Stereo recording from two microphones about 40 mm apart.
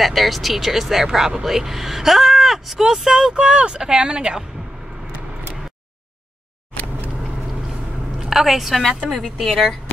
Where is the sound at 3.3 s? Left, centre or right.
Right.